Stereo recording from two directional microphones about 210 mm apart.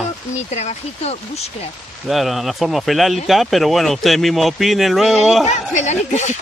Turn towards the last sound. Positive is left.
turn(degrees=35)  # may be behind; listen again after turning